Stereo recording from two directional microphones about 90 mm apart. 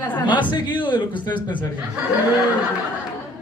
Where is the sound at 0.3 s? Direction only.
60° left (ahead or behind).